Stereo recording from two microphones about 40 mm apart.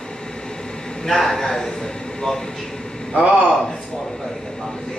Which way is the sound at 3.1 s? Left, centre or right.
Right.